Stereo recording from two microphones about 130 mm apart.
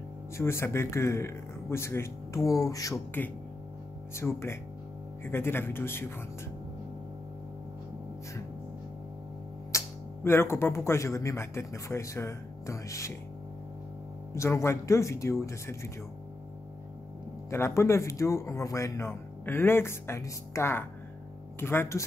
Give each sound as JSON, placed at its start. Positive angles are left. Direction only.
{"t": 0.4, "sound": "speech", "side_deg": 20}
{"t": 4.1, "sound": "speech", "side_deg": 20}
{"t": 9.7, "sound": "speech", "side_deg": 20}
{"t": 14.3, "sound": "speech", "side_deg": 20}
{"t": 17.5, "sound": "speech", "side_deg": 20}